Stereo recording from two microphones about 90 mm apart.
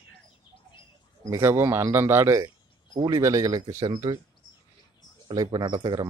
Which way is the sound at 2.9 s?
45° right (ahead or behind).